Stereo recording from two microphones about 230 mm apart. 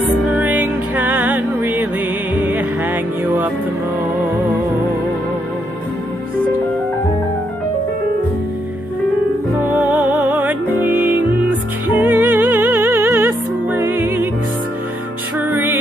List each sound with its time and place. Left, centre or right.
0.3 s music: centre
9.7 s music: centre
15.3 s music: centre